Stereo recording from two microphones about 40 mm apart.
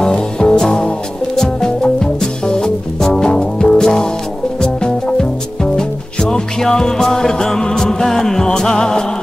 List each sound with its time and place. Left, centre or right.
0.0 s music: left